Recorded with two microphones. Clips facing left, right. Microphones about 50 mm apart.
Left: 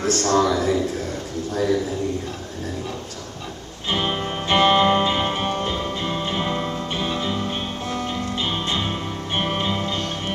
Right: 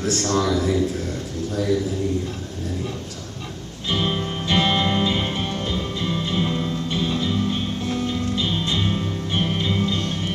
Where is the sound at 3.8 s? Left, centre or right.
Left.